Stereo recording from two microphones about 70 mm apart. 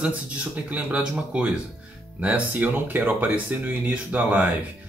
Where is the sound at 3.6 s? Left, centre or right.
Centre.